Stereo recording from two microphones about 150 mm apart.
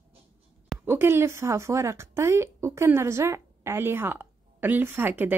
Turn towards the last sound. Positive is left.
turn(degrees=-15)  # may be behind; listen again after turning